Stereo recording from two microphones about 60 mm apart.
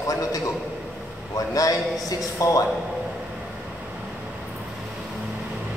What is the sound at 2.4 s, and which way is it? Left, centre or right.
Speech, left.